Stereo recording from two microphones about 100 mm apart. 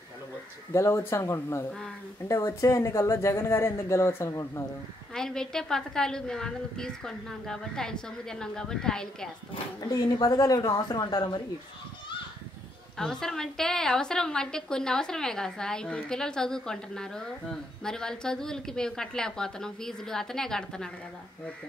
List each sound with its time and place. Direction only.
0.7 s a woman's voice: 30° left (ahead or behind)
5.1 s a woman's voice: 5° left (ahead or behind)
9.8 s speech: 45° left (ahead or behind)
12.9 s a woman's voice: 5° left (ahead or behind)